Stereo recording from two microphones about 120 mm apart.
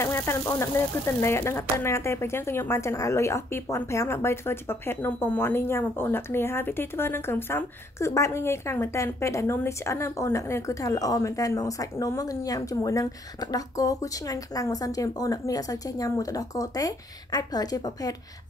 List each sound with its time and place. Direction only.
0.0 s speech: 20° left (ahead or behind)